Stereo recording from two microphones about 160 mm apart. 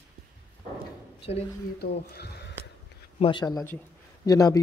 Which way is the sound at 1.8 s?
90° left.